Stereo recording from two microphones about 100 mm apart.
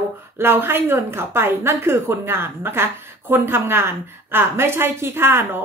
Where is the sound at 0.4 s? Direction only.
25° right (ahead or behind).